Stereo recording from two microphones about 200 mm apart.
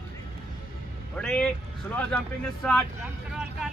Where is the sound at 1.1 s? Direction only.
5° left (ahead or behind).